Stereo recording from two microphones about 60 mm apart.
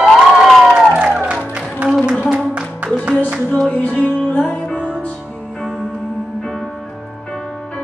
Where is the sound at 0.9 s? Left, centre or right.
Right.